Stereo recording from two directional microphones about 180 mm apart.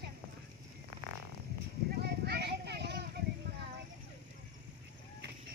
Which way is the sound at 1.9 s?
60° right (ahead or behind).